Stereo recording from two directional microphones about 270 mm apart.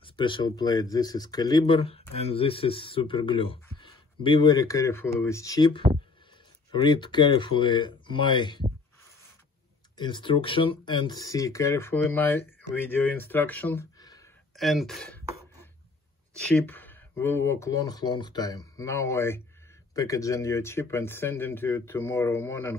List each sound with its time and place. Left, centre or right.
0.0 s speech: centre
9.9 s speech: centre
14.6 s speech: centre
16.4 s speech: centre